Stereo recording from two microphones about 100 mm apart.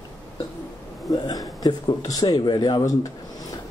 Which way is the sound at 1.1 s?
35° left (ahead or behind).